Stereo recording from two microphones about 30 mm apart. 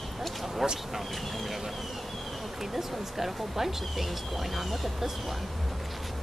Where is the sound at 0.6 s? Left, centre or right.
Centre.